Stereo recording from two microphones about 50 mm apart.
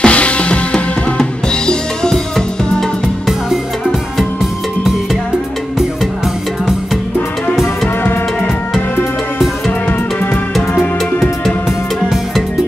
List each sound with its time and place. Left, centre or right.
0.0 s drum kit: left